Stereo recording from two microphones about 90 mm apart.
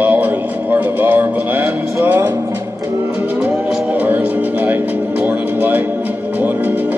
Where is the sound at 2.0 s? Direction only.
20° right (ahead or behind).